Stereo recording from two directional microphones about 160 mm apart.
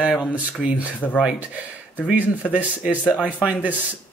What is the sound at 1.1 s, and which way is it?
Speech, 5° right (ahead or behind).